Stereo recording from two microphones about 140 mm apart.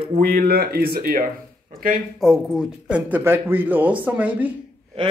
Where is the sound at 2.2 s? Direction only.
5° right (ahead or behind).